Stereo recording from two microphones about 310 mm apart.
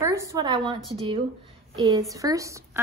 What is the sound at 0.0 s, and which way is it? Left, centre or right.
Speech, centre.